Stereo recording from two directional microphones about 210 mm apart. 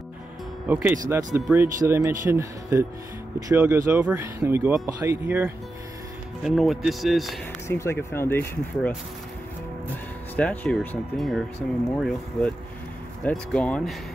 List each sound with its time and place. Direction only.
0.7 s speech: 10° right (ahead or behind)
6.4 s speech: centre (ahead or behind)
7.6 s speech: 15° left (ahead or behind)
10.3 s speech: 5° left (ahead or behind)